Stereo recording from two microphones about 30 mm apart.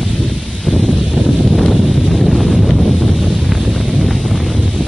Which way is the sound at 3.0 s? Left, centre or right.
Centre.